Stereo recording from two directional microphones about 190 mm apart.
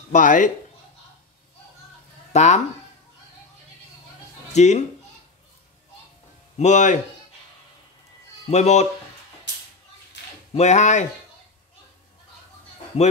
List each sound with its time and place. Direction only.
0.1 s speech: 45° left (ahead or behind)
2.3 s speech: 35° left (ahead or behind)
4.6 s speech: 35° left (ahead or behind)
6.6 s speech: 40° left (ahead or behind)
8.5 s speech: 35° left (ahead or behind)
10.5 s speech: 35° left (ahead or behind)